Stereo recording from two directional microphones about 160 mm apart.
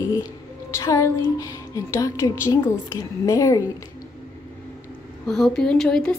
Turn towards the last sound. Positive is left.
turn(degrees=5)  # may be behind; listen again after turning